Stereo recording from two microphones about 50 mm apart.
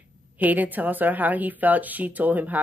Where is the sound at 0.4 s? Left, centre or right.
Right.